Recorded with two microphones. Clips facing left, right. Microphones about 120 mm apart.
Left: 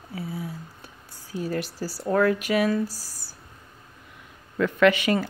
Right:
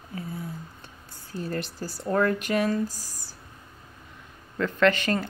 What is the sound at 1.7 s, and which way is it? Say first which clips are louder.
Speech: left 3 dB; 35° left (ahead or behind).